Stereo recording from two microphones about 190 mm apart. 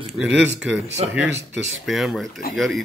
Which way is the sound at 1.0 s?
30° right (ahead or behind).